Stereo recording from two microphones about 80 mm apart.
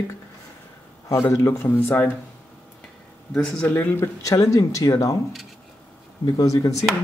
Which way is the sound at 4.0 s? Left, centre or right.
Left.